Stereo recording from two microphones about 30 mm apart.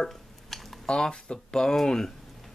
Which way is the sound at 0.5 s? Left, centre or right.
Centre.